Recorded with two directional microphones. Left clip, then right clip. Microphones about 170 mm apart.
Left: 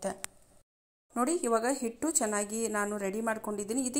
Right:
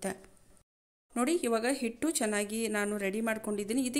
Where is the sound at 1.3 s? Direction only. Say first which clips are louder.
Even; 30° right (ahead or behind).